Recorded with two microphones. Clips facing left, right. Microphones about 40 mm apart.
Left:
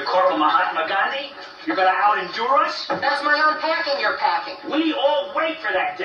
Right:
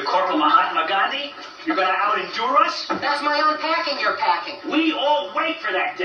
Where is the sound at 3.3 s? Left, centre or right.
Centre.